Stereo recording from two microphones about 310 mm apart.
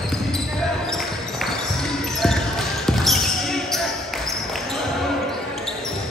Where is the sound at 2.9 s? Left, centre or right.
Centre.